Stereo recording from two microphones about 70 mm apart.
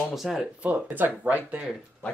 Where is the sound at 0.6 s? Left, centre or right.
Right.